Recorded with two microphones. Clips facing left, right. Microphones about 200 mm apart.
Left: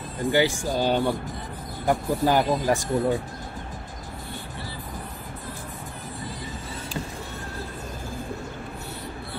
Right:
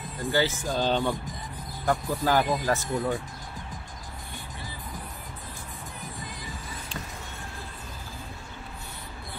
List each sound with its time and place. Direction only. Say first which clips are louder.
0.3 s speech: left 4 dB; 15° left (ahead or behind)